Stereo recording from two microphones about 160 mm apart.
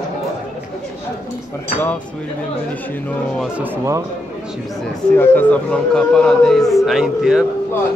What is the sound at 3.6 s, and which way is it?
Speech, 15° right (ahead or behind).